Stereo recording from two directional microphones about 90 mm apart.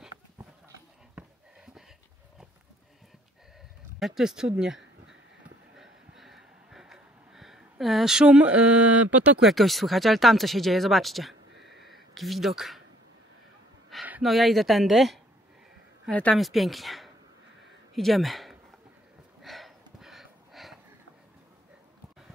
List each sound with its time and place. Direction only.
4.0 s speech: 5° right (ahead or behind)
5.8 s a sound: 5° right (ahead or behind)
7.8 s speech: 5° right (ahead or behind)
9.4 s speech: centre (ahead or behind)
11.8 s a sound: centre (ahead or behind)
14.2 s speech: centre (ahead or behind)
16.1 s speech: 15° left (ahead or behind)
16.3 s speech: centre (ahead or behind)
17.9 s a sound: centre (ahead or behind)